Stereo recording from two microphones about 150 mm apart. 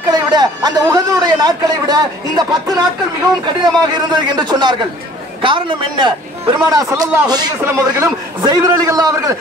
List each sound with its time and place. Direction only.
0.1 s a man's voice: 30° right (ahead or behind)